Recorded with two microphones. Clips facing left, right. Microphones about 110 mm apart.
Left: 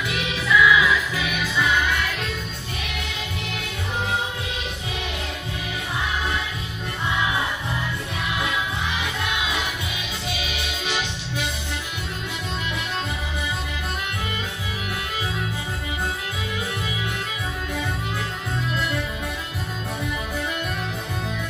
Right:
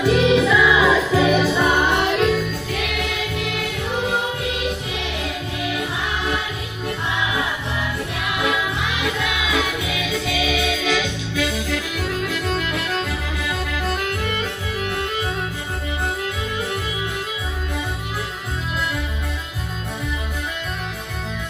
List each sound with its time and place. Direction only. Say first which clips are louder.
0.0 s music: right 12 dB; 30° right (ahead or behind); by 3.4 s 75° right (ahead or behind)
8.5 s music: right 4 dB; 90° right
12.4 s music: right 6 dB; 90° right